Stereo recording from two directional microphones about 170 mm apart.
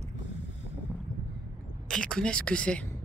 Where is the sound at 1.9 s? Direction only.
5° left (ahead or behind).